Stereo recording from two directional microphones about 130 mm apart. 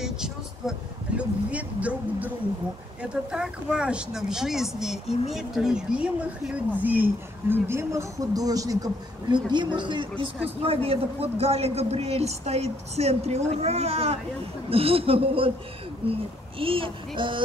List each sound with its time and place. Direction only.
0.0 s vehicle: 5° right (ahead or behind)
3.0 s speech: 5° right (ahead or behind); by 17.4 s 40° right (ahead or behind)